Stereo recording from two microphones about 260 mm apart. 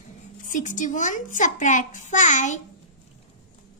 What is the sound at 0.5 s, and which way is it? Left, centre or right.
A child's voice, left.